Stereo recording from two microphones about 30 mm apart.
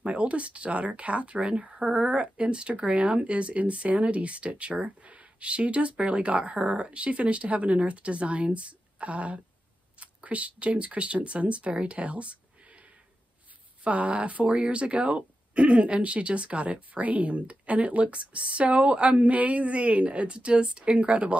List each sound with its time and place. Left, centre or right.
0.0 s a woman's voice: right
13.8 s speech: right
14.5 s speech: right